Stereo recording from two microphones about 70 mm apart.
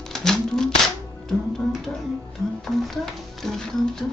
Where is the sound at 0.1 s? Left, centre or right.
Centre.